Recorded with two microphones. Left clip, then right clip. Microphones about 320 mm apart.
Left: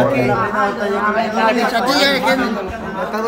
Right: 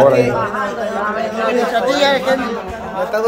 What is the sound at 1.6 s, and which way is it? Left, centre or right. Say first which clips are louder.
Speech: right 1 dB; left.